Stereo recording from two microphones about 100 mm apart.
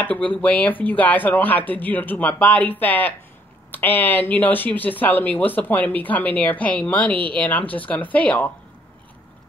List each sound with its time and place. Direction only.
0.0 s speech: 15° left (ahead or behind)